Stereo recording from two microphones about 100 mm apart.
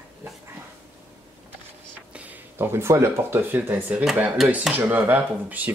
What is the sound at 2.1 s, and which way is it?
Speech, 15° right (ahead or behind).